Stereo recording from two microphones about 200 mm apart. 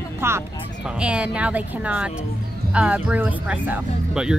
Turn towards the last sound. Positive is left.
turn(degrees=-5)  # may be behind; listen again after turning